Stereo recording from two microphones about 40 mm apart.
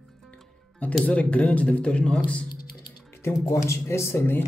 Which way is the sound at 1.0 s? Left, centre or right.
Left.